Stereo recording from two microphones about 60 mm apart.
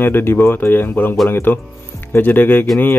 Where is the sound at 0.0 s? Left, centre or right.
Left.